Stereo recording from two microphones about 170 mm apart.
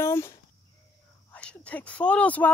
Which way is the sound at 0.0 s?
15° left (ahead or behind).